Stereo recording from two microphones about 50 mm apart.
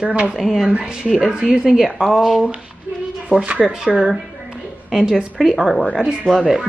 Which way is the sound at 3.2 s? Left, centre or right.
Centre.